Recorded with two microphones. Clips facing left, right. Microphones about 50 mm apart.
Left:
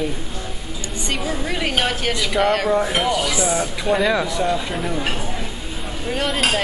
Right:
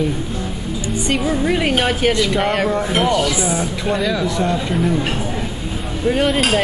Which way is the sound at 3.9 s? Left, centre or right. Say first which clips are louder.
Left 1 dB; centre.